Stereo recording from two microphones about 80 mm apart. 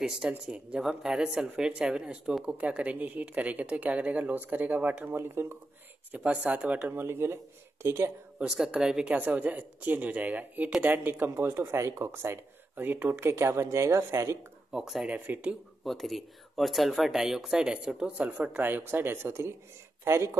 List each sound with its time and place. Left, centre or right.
0.0 s speech: centre; by 5.6 s right
6.1 s speech: centre
6.9 s speech: right
8.4 s speech: centre; by 14.4 s right
14.7 s speech: centre
15.1 s speech: right
15.8 s speech: centre; by 20.3 s right